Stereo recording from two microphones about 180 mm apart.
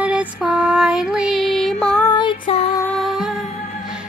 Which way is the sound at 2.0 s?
25° left (ahead or behind).